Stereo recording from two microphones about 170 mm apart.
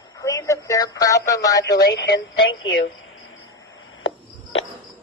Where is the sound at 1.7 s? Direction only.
80° left.